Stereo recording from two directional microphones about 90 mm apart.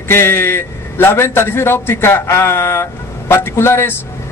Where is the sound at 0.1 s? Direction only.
25° left (ahead or behind).